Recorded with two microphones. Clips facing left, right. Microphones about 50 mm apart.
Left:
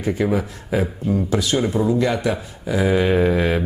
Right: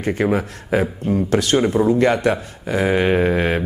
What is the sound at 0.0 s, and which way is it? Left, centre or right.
Speech, right.